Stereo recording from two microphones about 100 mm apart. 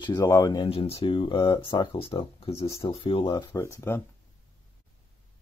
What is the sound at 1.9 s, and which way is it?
Speech, 70° left (ahead or behind).